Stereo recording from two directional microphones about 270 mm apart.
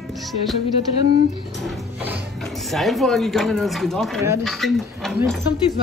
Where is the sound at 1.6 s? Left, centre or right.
Centre.